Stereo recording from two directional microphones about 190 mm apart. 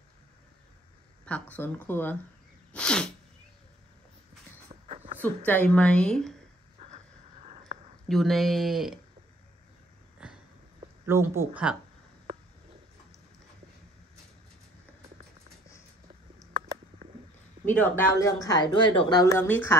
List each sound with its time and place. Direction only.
1.2 s a woman's voice: 10° left (ahead or behind)
4.8 s a sound: 35° right (ahead or behind)
5.2 s a woman's voice: 10° left (ahead or behind)
7.4 s a sound: 35° right (ahead or behind)
8.1 s a woman's voice: centre (ahead or behind)
11.1 s speech: 15° right (ahead or behind)
17.6 s speech: 10° left (ahead or behind)